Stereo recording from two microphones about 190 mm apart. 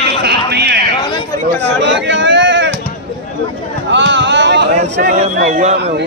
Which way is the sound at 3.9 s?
70° right (ahead or behind).